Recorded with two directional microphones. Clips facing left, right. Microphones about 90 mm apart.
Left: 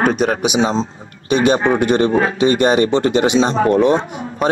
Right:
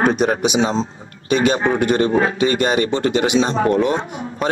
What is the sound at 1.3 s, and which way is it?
Speech, 25° left (ahead or behind).